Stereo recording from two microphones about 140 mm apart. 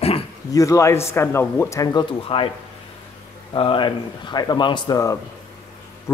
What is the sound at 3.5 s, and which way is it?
Speech, 35° left (ahead or behind).